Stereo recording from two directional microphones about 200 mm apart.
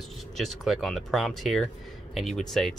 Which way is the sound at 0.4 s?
Centre (ahead or behind).